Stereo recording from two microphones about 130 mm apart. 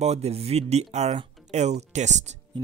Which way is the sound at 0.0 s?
55° right (ahead or behind).